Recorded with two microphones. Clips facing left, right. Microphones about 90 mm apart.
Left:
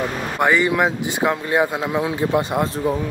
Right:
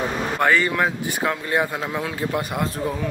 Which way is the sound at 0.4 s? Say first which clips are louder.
Left 3 dB; 15° left (ahead or behind).